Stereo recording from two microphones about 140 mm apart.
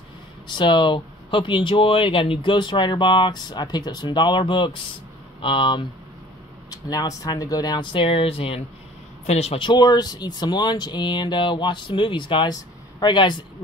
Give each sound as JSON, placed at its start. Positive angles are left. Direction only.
{"t": 0.5, "sound": "a man's voice", "side_deg": 35}
{"t": 9.7, "sound": "speech", "side_deg": 30}